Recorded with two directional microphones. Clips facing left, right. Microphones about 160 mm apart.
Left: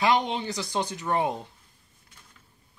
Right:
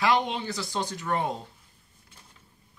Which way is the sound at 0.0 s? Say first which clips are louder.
Left 1 dB; 20° left (ahead or behind).